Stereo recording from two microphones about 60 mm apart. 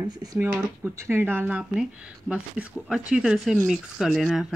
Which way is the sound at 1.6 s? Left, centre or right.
Centre.